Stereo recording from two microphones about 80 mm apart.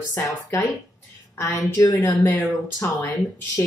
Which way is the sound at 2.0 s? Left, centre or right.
Left.